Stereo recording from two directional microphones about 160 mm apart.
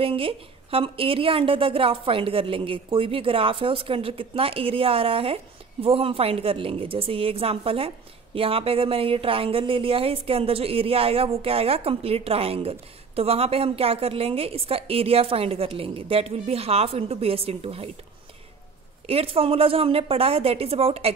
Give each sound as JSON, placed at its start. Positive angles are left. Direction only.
{"t": 0.0, "sound": "speech", "side_deg": -35}
{"t": 19.0, "sound": "speech", "side_deg": -35}